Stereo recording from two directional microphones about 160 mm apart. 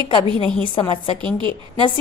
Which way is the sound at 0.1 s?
30° left (ahead or behind).